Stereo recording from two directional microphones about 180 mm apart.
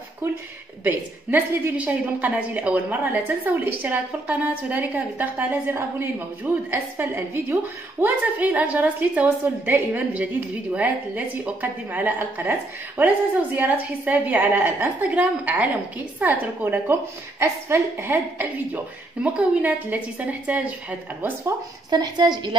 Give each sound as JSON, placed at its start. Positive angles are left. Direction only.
{"t": 0.8, "sound": "a woman's voice", "side_deg": -10}
{"t": 21.9, "sound": "a woman's voice", "side_deg": -25}